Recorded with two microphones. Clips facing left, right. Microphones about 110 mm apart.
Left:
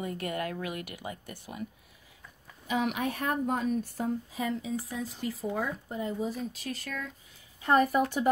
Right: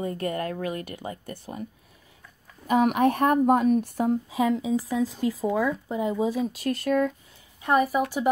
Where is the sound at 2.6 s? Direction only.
50° right (ahead or behind); by 6.5 s 90° right.